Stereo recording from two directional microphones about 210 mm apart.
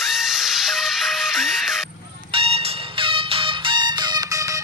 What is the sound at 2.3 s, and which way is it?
Music, 25° right (ahead or behind).